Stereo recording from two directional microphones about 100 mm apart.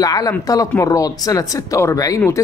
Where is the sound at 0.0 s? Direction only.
40° left (ahead or behind).